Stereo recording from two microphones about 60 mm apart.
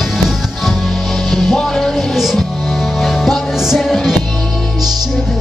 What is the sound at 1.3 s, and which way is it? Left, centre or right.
Music, centre.